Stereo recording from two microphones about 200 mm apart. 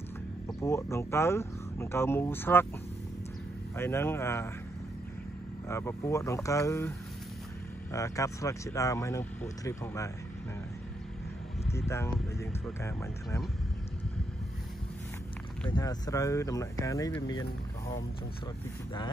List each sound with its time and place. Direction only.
0.5 s speech: 15° left (ahead or behind)
3.7 s speech: 10° left (ahead or behind)
5.7 s speech: 15° left (ahead or behind)
7.9 s speech: 15° left (ahead or behind)
11.7 s speech: 15° left (ahead or behind)
15.7 s speech: 20° left (ahead or behind)